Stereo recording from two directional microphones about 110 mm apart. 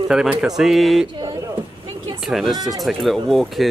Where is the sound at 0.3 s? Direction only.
5° right (ahead or behind).